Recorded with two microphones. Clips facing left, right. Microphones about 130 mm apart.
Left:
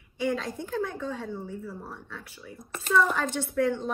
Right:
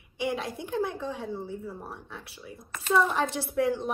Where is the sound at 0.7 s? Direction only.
25° right (ahead or behind).